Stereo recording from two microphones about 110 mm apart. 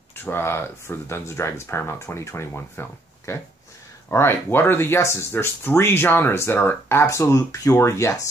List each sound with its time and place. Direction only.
0.1 s speech: 20° left (ahead or behind)